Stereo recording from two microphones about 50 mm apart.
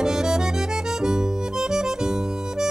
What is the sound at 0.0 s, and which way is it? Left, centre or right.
Music, centre.